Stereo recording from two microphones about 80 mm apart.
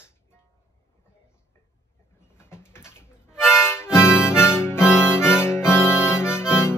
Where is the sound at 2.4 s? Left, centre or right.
Left.